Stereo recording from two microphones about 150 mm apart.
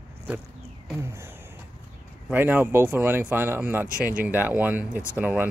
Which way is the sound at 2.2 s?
15° right (ahead or behind).